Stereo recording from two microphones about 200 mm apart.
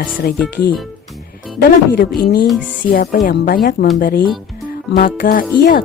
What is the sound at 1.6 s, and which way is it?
Speech, 50° left (ahead or behind).